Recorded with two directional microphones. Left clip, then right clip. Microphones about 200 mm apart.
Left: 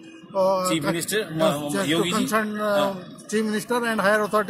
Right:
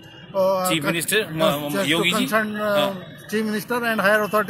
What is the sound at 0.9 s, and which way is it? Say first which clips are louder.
A man's voice: right 4 dB; 20° right (ahead or behind).